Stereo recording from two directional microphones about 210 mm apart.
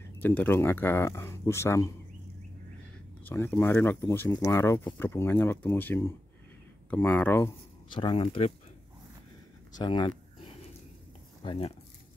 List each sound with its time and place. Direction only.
0.2 s speech: 10° left (ahead or behind)
3.3 s speech: 10° left (ahead or behind)
7.9 s speech: 25° left (ahead or behind)
9.8 s speech: 20° left (ahead or behind)
11.4 s speech: 25° left (ahead or behind)